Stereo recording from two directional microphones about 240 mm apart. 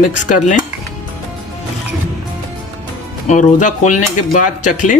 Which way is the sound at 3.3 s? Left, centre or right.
Left.